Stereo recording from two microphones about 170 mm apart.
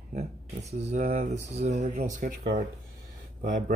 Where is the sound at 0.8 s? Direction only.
40° right (ahead or behind).